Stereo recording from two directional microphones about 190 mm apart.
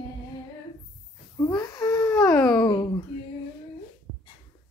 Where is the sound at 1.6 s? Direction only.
20° left (ahead or behind).